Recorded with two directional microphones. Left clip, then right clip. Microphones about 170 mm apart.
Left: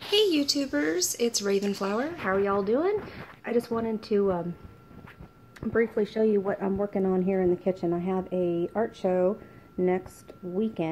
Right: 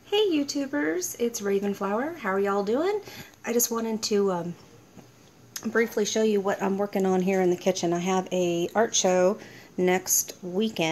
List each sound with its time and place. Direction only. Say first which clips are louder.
0.1 s speech: left 1 dB; 5° left (ahead or behind)
5.7 s speech: right 1 dB; 5° right (ahead or behind)